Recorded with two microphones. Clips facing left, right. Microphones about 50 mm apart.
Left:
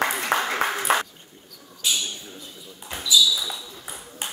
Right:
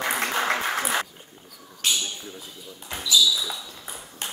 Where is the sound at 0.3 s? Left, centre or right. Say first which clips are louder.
Left 1 dB; left.